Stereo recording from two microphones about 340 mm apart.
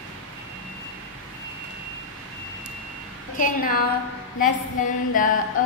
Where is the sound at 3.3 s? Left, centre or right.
Left.